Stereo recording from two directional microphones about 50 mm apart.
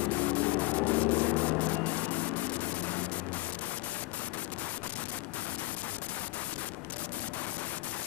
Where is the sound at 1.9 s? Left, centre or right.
Left.